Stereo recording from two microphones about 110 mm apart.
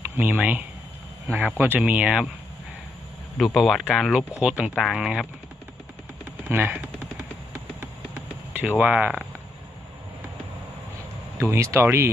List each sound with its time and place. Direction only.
0.2 s speech: 15° right (ahead or behind)
3.3 s speech: centre (ahead or behind)
6.4 s a sound: 15° right (ahead or behind)
11.5 s speech: 25° right (ahead or behind)